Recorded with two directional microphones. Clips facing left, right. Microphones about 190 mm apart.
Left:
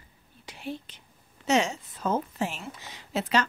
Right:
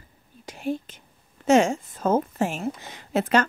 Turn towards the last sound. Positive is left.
turn(degrees=-50)  # may be behind; listen again after turning